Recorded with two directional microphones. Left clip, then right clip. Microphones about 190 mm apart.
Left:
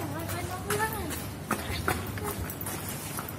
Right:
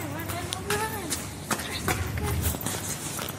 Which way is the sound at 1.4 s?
5° left (ahead or behind).